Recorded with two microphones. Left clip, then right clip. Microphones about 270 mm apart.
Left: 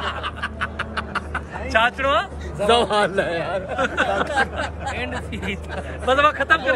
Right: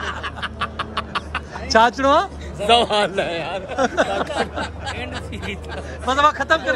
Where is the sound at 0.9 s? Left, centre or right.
Centre.